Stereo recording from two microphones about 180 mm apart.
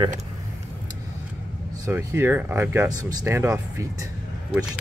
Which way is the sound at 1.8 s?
15° right (ahead or behind).